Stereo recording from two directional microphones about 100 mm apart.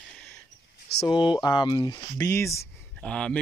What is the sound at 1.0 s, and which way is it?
Speech, 50° left (ahead or behind).